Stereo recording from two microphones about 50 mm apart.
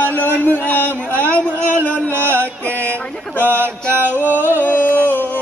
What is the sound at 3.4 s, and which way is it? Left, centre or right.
Mantra, right.